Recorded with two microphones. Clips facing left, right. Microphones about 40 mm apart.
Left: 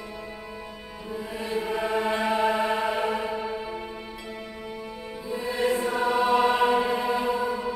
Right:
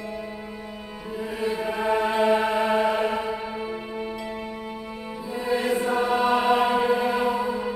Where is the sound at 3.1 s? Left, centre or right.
Centre.